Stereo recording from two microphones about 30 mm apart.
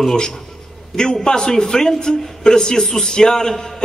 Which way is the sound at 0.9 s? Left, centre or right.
Left.